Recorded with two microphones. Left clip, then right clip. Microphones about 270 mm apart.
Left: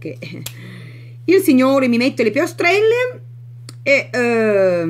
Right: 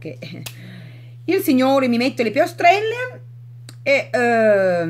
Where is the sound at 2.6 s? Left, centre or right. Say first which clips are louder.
Left 1 dB; right.